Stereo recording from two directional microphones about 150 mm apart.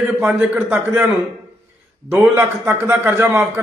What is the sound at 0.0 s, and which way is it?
Speech, 5° right (ahead or behind).